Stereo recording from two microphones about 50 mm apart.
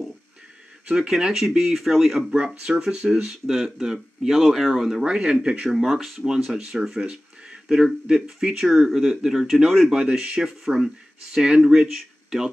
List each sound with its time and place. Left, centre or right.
0.8 s speech: centre
2.3 s speech: centre
5.0 s speech: right; by 9.6 s centre
9.8 s speech: centre